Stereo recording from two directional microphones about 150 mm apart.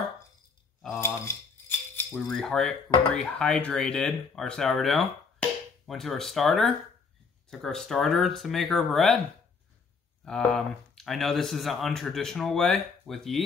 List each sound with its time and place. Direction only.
0.9 s rattle: 15° left (ahead or behind)
2.0 s speech: centre (ahead or behind)
10.2 s speech: 5° left (ahead or behind)